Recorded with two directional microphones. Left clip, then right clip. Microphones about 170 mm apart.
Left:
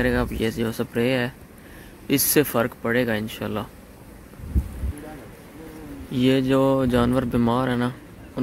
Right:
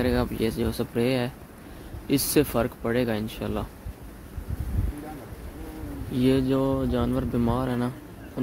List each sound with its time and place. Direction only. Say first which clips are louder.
0.0 s speech: left 2 dB; centre (ahead or behind)
6.1 s speech: left 3 dB; 5° left (ahead or behind)
6.6 s speech: left 6 dB; 20° left (ahead or behind)